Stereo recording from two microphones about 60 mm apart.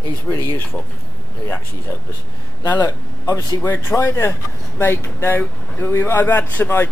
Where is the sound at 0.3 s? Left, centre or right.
Left.